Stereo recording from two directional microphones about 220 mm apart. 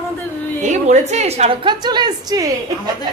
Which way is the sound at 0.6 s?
35° right (ahead or behind).